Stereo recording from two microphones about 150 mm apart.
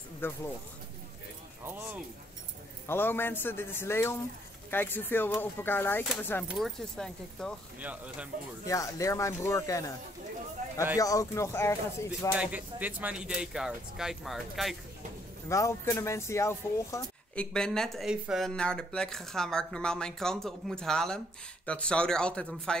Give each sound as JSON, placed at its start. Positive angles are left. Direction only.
{"t": 0.2, "sound": "speech", "side_deg": 15}
{"t": 2.9, "sound": "speech", "side_deg": 15}
{"t": 6.4, "sound": "speech", "side_deg": 0}
{"t": 7.8, "sound": "speech", "side_deg": -10}
{"t": 8.6, "sound": "speech", "side_deg": 20}
{"t": 10.6, "sound": "a sound", "side_deg": -60}
{"t": 11.0, "sound": "speech", "side_deg": 20}
{"t": 12.4, "sound": "speech", "side_deg": -10}
{"t": 15.4, "sound": "speech", "side_deg": 20}
{"t": 17.4, "sound": "speech", "side_deg": 5}